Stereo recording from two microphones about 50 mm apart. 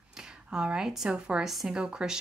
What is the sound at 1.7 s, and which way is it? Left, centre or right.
Speech, centre.